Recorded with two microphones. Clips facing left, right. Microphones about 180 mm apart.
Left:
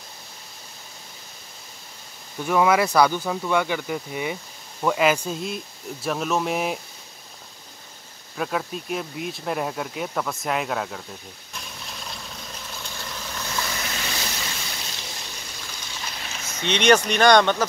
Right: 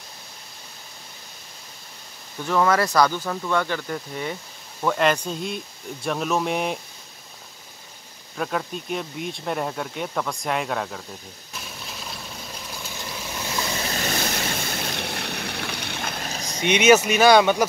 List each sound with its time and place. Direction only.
2.4 s speech: 10° left (ahead or behind)
8.4 s speech: centre (ahead or behind)
11.5 s a sound: 5° right (ahead or behind)
12.7 s boat: 10° right (ahead or behind)
13.9 s boat: 45° right (ahead or behind)
16.3 s a sound: 35° right (ahead or behind)
16.5 s speech: 10° right (ahead or behind)